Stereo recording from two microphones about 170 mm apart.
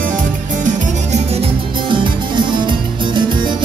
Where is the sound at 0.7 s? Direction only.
40° right (ahead or behind).